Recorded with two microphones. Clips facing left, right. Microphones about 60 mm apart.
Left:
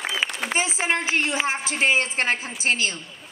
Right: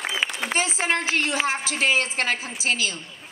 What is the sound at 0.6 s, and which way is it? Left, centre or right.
A woman's voice, centre.